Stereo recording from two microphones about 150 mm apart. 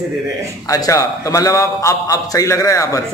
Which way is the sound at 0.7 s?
20° left (ahead or behind).